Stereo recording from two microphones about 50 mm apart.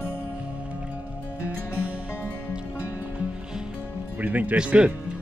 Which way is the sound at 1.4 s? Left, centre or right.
Right.